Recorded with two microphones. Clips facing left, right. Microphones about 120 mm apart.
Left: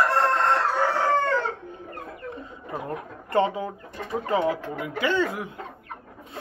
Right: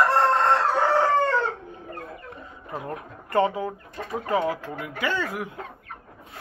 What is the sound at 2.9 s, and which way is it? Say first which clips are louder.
Speech: left 1 dB; 25° left (ahead or behind).